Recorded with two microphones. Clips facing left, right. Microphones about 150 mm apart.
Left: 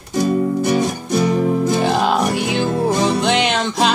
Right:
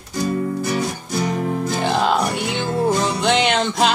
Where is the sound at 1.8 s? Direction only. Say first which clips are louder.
Left 2 dB; 5° left (ahead or behind).